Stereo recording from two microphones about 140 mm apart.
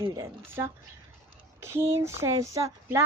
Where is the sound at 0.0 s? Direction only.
25° right (ahead or behind).